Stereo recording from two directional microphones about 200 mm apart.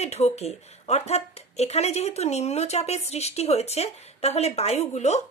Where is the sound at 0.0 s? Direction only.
30° left (ahead or behind).